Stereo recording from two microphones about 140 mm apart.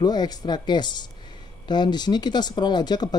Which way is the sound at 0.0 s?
30° left (ahead or behind).